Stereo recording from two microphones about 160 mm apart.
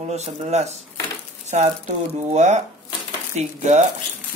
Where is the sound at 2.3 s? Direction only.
45° right (ahead or behind).